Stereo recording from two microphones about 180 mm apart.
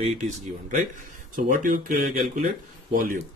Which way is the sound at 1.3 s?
50° right (ahead or behind).